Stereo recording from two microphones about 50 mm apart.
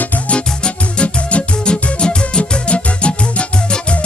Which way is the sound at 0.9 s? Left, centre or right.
Left.